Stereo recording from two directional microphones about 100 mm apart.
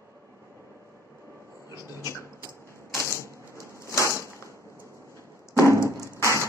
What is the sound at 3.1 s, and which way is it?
Typewriter, 30° right (ahead or behind).